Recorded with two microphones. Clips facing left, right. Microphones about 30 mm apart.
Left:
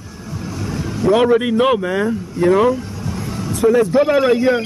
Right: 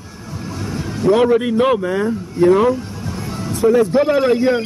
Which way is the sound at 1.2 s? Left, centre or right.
Left.